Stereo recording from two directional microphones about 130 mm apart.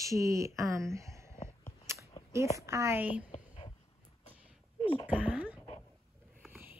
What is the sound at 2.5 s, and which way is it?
Speech, 20° right (ahead or behind).